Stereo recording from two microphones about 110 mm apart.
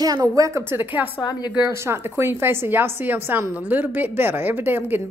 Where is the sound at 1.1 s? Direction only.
40° left (ahead or behind).